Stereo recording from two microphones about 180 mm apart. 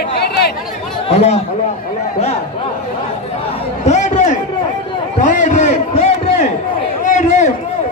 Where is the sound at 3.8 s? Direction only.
40° left (ahead or behind).